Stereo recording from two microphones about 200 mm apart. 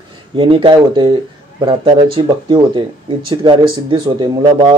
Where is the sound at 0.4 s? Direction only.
25° right (ahead or behind).